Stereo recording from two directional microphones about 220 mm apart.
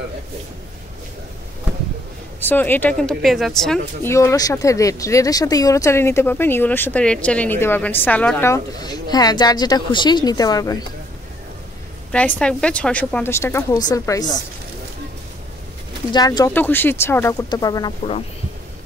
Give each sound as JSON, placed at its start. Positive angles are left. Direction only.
{"t": 2.4, "sound": "speech", "side_deg": 10}
{"t": 4.1, "sound": "speech", "side_deg": 15}
{"t": 12.1, "sound": "speech", "side_deg": 5}
{"t": 16.1, "sound": "speech", "side_deg": 20}